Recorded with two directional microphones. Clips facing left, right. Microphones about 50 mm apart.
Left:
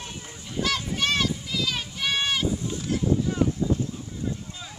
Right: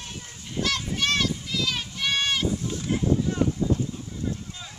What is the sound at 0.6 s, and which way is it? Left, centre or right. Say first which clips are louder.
Children playing: even; centre.